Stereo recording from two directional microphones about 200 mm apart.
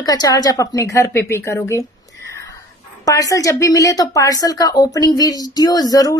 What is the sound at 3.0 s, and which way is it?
A woman's voice, 15° left (ahead or behind).